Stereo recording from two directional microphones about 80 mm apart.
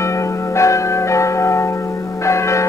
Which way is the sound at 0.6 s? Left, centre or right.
Left.